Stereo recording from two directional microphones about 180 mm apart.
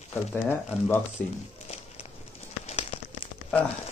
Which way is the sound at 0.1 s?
5° left (ahead or behind).